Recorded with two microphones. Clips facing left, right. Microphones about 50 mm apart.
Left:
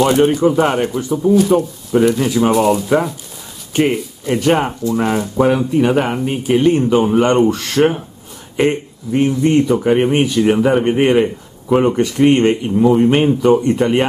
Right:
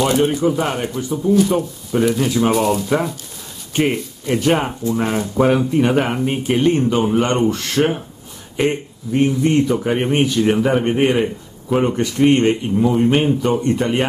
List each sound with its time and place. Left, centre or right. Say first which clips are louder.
0.0 s speech: left 4 dB; centre
0.5 s speech: left 5 dB; centre
1.4 s speech: left 3 dB; centre
4.9 s speech: left 3 dB; centre
5.4 s speech: left 1 dB; centre
6.6 s speech: left 3 dB; centre